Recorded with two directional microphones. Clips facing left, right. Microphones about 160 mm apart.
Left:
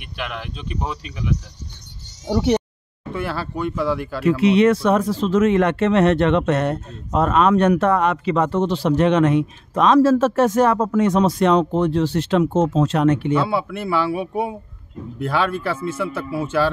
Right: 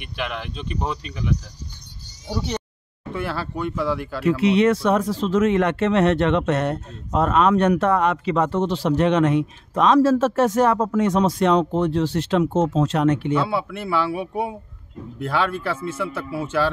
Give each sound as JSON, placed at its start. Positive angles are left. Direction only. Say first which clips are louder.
{"t": 0.0, "sound": "speech", "louder": "right 1 dB", "side_deg": 5}
{"t": 2.2, "sound": "speech", "louder": "left 9 dB", "side_deg": 75}
{"t": 3.2, "sound": "speech", "louder": "left 2 dB", "side_deg": 10}
{"t": 4.2, "sound": "speech", "louder": "left 2 dB", "side_deg": 60}
{"t": 13.5, "sound": "speech", "louder": "left 2 dB", "side_deg": 10}